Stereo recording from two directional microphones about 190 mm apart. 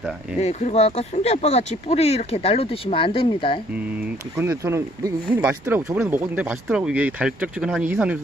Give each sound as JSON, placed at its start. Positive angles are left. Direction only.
{"t": 0.4, "sound": "speech", "side_deg": 40}
{"t": 4.4, "sound": "speech", "side_deg": -15}